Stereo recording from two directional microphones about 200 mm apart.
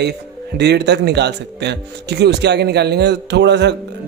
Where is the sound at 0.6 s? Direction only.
55° right (ahead or behind).